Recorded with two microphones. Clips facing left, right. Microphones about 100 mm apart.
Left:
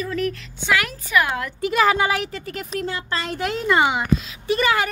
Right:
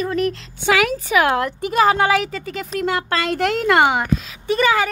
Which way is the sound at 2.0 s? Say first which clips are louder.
Right 5 dB; 90° right.